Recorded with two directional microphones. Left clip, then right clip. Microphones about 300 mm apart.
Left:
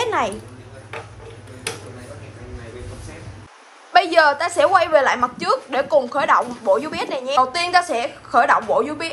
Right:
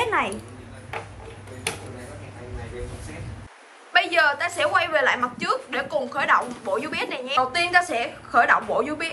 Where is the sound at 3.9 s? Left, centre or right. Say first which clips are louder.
Left 5 dB; centre.